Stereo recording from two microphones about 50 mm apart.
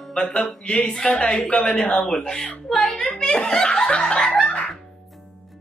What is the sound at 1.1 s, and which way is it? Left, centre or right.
A woman's voice, left.